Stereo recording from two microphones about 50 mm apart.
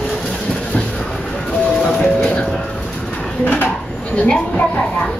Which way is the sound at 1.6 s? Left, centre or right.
Centre.